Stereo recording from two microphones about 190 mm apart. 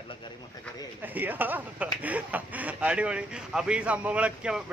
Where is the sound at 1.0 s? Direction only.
10° right (ahead or behind).